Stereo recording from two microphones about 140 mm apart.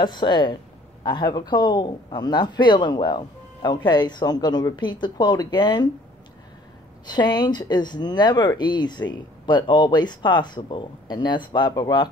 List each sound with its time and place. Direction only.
0.0 s speech: 30° left (ahead or behind)
7.1 s speech: 30° left (ahead or behind)